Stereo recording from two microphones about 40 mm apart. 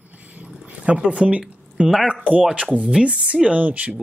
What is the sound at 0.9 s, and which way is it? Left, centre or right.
Speech, right.